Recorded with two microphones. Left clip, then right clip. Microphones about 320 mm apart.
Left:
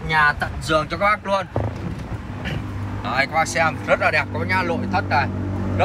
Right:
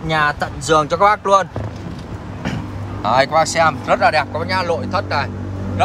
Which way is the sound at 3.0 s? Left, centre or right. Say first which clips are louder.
Right 6 dB; centre.